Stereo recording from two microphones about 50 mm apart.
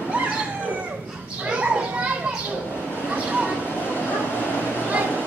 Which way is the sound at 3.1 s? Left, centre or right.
Right.